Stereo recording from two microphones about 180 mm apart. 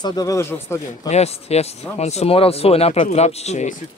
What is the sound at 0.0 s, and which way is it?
Speech, 20° left (ahead or behind).